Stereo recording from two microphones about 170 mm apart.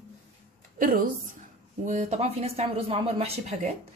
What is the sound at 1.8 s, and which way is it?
A woman's voice, 45° right (ahead or behind).